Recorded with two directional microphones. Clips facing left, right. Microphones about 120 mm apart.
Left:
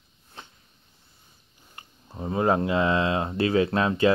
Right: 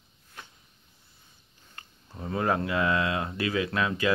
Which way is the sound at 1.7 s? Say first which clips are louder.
Left 5 dB; 20° left (ahead or behind).